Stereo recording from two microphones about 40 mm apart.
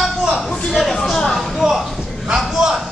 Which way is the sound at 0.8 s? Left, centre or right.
Centre.